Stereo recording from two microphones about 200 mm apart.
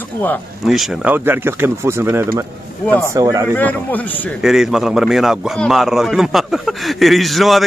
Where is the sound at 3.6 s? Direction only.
10° left (ahead or behind).